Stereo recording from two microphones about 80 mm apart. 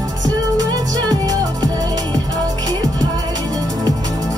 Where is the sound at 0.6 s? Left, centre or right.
Right.